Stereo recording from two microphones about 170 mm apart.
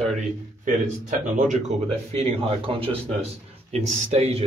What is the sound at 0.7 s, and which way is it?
Speech, 50° right (ahead or behind).